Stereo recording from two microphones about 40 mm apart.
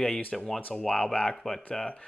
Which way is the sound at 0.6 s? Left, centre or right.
Left.